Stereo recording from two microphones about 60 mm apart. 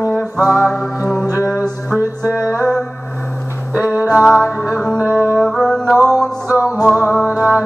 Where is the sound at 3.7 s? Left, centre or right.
Right.